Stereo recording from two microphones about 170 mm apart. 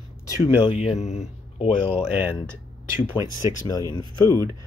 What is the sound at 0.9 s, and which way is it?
Speech, 45° left (ahead or behind).